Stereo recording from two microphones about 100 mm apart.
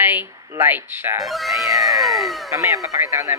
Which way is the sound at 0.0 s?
20° right (ahead or behind).